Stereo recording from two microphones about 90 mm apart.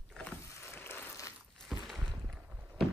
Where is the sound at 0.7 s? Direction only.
25° left (ahead or behind).